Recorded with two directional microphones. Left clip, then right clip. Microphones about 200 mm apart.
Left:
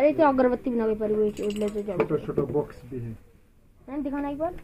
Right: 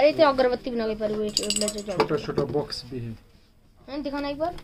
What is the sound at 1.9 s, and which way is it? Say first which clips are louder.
Speech: right 3 dB; 5° left (ahead or behind).